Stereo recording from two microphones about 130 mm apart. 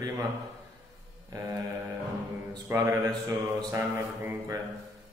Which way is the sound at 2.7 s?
20° right (ahead or behind).